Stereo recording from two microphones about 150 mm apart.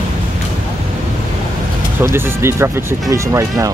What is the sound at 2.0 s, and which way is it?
Speech, 15° right (ahead or behind).